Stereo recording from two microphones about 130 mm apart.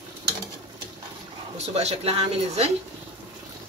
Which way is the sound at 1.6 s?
55° right (ahead or behind).